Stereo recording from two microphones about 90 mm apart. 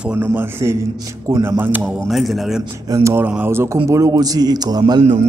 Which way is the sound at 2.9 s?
30° right (ahead or behind).